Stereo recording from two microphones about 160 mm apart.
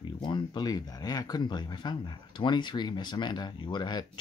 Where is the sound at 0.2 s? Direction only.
30° left (ahead or behind).